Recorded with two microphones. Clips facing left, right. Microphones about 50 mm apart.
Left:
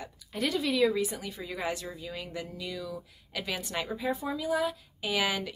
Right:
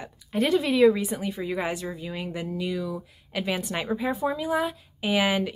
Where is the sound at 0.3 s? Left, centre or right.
Right.